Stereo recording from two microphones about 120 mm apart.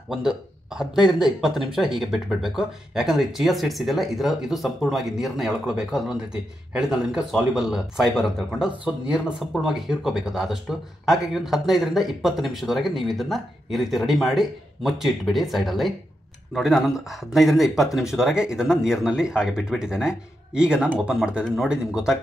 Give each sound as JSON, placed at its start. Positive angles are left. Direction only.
{"t": 0.1, "sound": "speech", "side_deg": -5}